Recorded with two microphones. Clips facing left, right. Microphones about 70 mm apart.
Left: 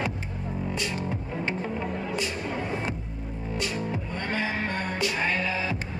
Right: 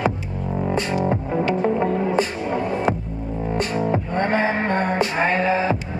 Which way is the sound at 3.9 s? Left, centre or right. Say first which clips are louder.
Right 10 dB; right.